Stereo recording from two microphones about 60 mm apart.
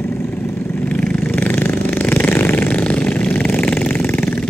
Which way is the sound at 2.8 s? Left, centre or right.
Left.